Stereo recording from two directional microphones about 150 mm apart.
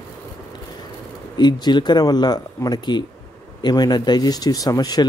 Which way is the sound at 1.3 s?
30° left (ahead or behind).